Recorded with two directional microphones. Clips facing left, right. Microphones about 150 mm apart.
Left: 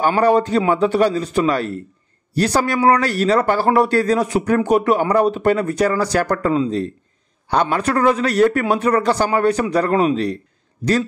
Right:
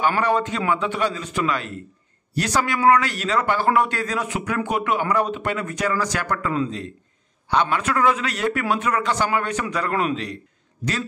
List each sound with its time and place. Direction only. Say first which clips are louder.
0.2 s a man's voice: left 7 dB; 35° left (ahead or behind)